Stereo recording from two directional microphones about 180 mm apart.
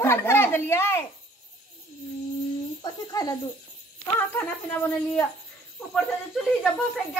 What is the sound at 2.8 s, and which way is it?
Speech, 20° left (ahead or behind).